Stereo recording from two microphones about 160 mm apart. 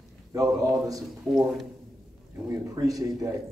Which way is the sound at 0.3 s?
20° right (ahead or behind).